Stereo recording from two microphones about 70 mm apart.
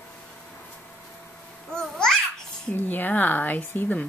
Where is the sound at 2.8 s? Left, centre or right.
Left.